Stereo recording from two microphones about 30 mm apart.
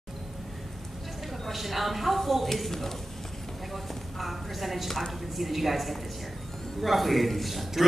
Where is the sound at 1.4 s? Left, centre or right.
Centre.